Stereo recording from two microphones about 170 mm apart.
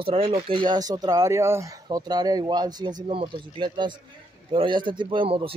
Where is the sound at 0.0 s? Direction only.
35° right (ahead or behind).